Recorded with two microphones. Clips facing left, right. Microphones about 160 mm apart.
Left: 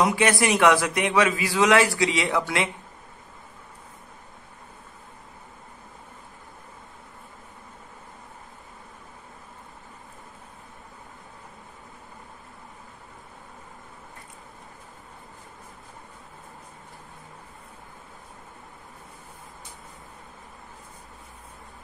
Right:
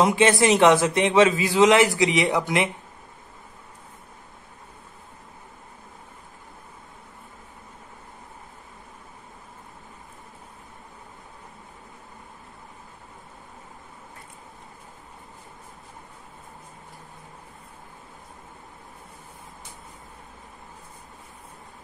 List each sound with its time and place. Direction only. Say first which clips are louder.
0.0 s a man's voice: right 3 dB; 25° right (ahead or behind)